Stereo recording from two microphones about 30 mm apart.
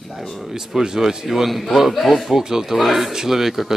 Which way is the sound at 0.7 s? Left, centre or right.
Centre.